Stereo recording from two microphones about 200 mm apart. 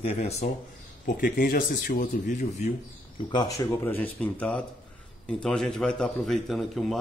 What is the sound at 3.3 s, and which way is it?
A man's voice, 20° left (ahead or behind).